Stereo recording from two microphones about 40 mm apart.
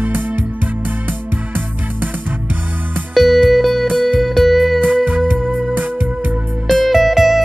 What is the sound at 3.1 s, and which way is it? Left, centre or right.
Music, centre.